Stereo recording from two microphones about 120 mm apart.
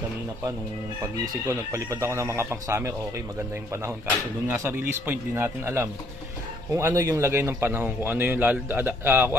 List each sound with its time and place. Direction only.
1.5 s speech: 25° right (ahead or behind)
4.5 s a man's voice: 20° right (ahead or behind)